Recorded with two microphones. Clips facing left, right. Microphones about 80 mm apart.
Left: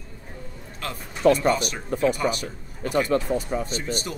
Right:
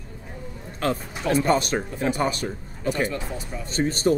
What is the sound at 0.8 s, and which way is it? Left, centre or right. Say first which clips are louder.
Speech: left 4 dB; right.